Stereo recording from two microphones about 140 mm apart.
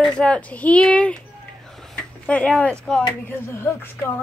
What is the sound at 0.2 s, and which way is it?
Speech, 10° left (ahead or behind).